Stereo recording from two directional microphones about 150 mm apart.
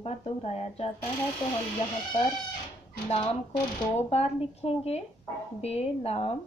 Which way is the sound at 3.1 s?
40° left (ahead or behind).